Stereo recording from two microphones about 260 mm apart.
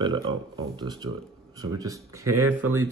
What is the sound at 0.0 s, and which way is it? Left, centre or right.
Speech, centre.